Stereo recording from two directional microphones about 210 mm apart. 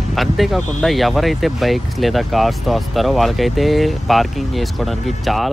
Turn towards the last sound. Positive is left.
turn(degrees=0)  # may be behind; listen again after turning